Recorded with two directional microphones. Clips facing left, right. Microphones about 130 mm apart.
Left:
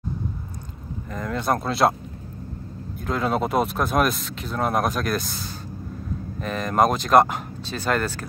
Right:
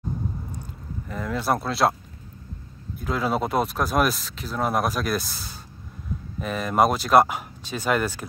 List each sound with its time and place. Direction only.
1.1 s speech: 5° right (ahead or behind)
3.1 s speech: 5° right (ahead or behind)